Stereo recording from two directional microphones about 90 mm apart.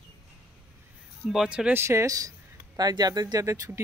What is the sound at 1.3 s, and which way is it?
Speech, 5° right (ahead or behind).